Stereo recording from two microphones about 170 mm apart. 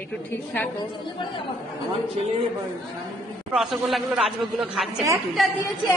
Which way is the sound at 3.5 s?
Centre (ahead or behind).